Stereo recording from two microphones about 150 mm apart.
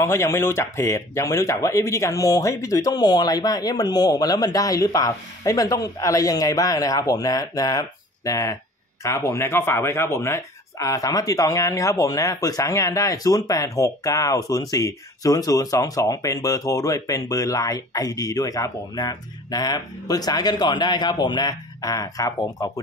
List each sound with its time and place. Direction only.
0.0 s speech: 20° left (ahead or behind)